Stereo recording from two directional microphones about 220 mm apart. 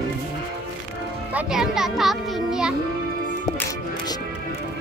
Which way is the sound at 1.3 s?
5° right (ahead or behind).